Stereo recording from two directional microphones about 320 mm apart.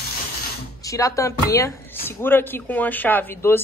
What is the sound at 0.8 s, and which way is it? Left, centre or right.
Speech, centre.